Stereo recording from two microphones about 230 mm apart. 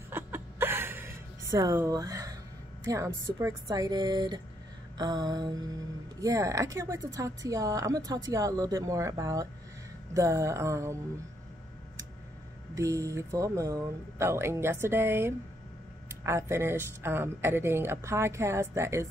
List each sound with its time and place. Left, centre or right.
0.1 s a sound: centre
2.9 s speech: centre
12.7 s speech: centre